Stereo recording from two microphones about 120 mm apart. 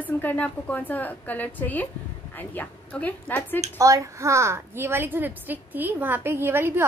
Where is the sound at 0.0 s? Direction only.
15° left (ahead or behind).